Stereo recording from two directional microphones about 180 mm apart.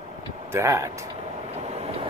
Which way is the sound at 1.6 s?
35° right (ahead or behind).